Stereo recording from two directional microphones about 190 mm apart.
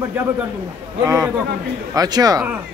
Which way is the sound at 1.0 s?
15° right (ahead or behind).